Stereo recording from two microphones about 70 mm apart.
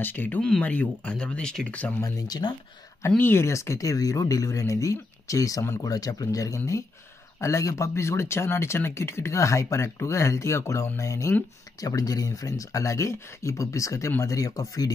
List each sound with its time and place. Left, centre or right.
0.0 s speech: left
0.4 s speech: centre
1.7 s speech: left
2.0 s speech: left
3.2 s speech: left
3.4 s speech: left
11.8 s speech: left